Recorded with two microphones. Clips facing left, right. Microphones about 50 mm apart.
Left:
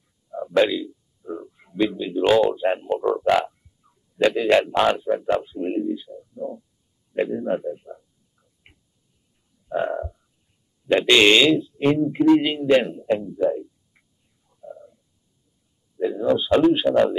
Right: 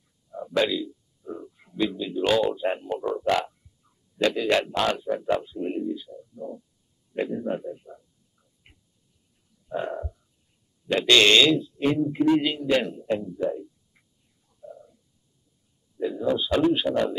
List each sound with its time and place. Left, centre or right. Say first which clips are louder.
0.3 s a sound: left 5 dB; centre
2.5 s speech: left 5 dB; centre
5.4 s a sound: left 4 dB; left
7.2 s speech: left 5 dB; centre
9.7 s frog: left 6 dB; centre
10.9 s speech: left 3 dB; left
14.6 s cat: left 4 dB; centre
16.0 s speech: left 4 dB; centre
16.9 s speech: left 7 dB; centre